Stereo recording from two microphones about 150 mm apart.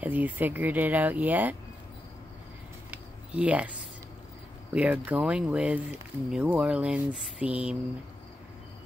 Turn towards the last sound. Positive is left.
turn(degrees=-5)  # may be behind; listen again after turning